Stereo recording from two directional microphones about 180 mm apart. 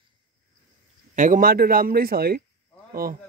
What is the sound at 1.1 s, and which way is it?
A man's voice, 45° right (ahead or behind).